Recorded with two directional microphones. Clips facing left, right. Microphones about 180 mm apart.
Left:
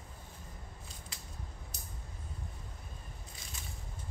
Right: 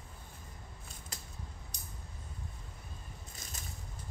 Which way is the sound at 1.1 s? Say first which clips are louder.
Right 2 dB; 45° right (ahead or behind).